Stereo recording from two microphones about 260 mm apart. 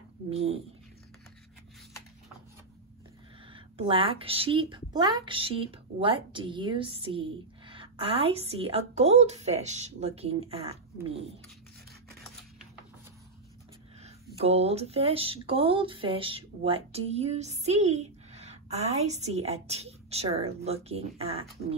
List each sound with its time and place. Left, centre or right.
0.3 s speech: right
3.5 s speech: centre
14.0 s speech: right